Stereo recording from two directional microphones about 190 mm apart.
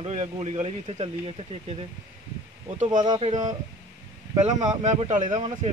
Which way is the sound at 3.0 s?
20° right (ahead or behind).